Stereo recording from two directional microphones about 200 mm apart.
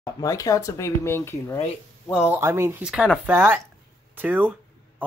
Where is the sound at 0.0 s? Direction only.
15° left (ahead or behind).